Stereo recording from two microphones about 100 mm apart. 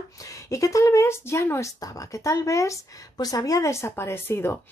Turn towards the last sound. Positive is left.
turn(degrees=25)  # may be behind; listen again after turning